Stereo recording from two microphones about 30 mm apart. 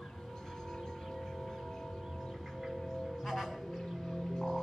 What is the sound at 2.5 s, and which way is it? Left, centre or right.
Music, centre.